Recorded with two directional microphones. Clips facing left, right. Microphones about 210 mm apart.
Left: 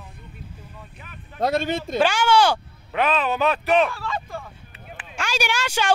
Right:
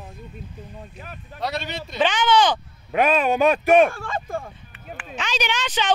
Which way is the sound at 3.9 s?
50° right (ahead or behind).